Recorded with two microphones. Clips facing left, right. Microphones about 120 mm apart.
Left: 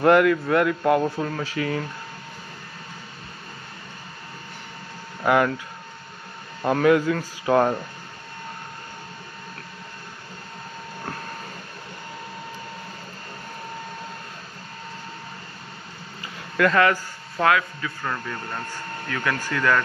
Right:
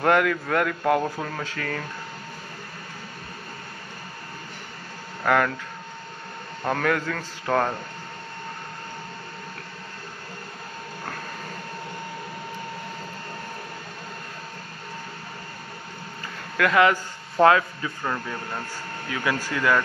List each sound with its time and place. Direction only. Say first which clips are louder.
0.0 s speech: left 4 dB; centre (ahead or behind)
5.2 s speech: left 2 dB; 10° left (ahead or behind)
6.6 s speech: left 6 dB; 10° left (ahead or behind)
16.7 s speech: right 3 dB; 15° right (ahead or behind)
17.4 s a man's voice: right 3 dB; 30° right (ahead or behind)
18.0 s speech: right 1 dB; 10° right (ahead or behind)